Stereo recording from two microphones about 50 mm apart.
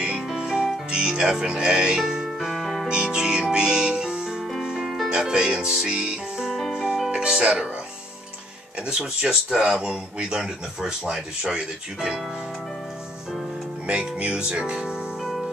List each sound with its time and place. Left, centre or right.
0.3 s music: centre
2.3 s music: centre
2.9 s music: centre
5.1 s speech: centre
6.7 s music: centre
7.2 s speech: centre
9.0 s speech: centre
13.8 s speech: right
14.4 s music: centre
15.2 s music: centre